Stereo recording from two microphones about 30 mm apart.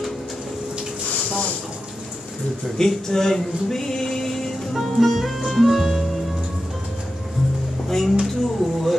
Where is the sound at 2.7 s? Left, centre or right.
Centre.